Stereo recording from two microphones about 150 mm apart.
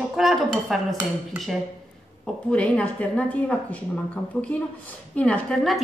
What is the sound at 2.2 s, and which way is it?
A woman's voice, 10° left (ahead or behind).